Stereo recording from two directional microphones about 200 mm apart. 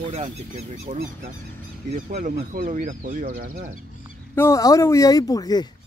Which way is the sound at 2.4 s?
45° right (ahead or behind).